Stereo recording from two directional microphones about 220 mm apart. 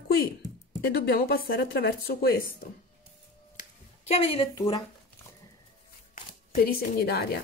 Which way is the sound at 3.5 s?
25° left (ahead or behind).